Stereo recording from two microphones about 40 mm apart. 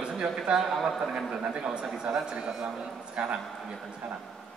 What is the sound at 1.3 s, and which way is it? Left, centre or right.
A man's voice, right.